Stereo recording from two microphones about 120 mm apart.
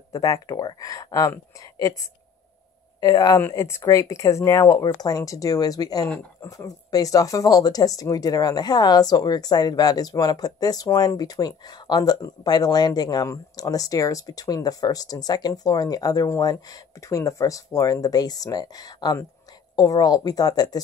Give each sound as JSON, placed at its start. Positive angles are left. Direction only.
{"t": 0.1, "sound": "speech", "side_deg": 30}
{"t": 3.0, "sound": "speech", "side_deg": 30}
{"t": 6.0, "sound": "speech", "side_deg": 15}
{"t": 6.5, "sound": "speech", "side_deg": 30}